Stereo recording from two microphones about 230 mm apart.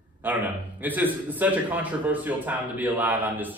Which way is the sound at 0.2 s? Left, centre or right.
Centre.